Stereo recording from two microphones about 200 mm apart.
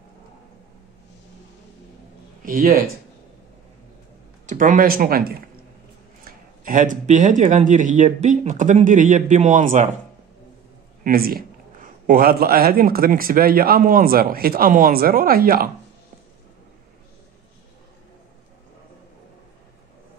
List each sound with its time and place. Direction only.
2.4 s speech: 45° right (ahead or behind)
4.5 s a man's voice: 40° right (ahead or behind)
11.1 s a man's voice: 50° right (ahead or behind)